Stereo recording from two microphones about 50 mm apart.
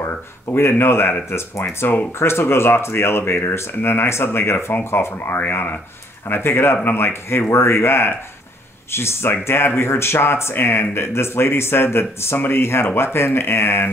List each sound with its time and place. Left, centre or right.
0.0 s speech: left